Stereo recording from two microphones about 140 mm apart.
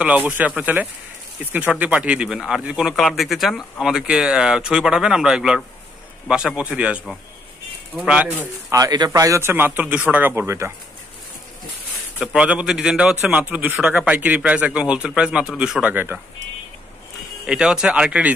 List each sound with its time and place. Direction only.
0.0 s a man's voice: 10° right (ahead or behind)
8.0 s a man's voice: 10° right (ahead or behind)
8.6 s speech: 25° right (ahead or behind)
12.2 s a man's voice: 5° right (ahead or behind)
17.5 s a man's voice: 5° right (ahead or behind)